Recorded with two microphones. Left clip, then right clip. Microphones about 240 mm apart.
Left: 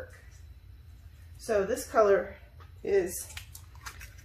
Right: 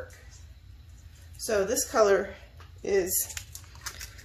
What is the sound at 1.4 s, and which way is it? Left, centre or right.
Speech, right.